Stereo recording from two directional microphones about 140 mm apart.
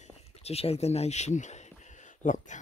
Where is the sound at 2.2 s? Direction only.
60° left (ahead or behind).